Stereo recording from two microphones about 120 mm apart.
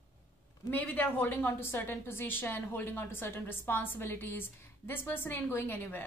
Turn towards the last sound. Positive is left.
turn(degrees=20)  # may be behind; listen again after turning